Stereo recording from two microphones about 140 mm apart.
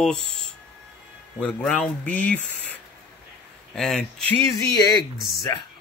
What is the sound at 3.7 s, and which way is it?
Speech, 5° left (ahead or behind).